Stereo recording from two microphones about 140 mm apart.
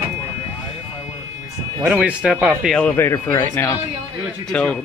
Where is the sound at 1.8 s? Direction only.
10° right (ahead or behind).